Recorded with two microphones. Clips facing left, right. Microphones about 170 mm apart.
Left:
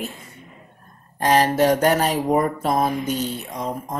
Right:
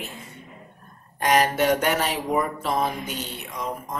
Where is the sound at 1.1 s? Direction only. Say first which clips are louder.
Left 3 dB; 35° left (ahead or behind).